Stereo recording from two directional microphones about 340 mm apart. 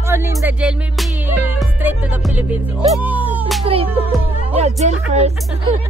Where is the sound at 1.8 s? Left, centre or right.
Centre.